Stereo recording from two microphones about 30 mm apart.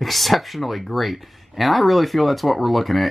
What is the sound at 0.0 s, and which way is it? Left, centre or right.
Speech, centre.